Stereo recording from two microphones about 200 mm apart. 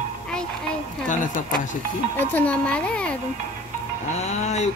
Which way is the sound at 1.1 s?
40° left (ahead or behind).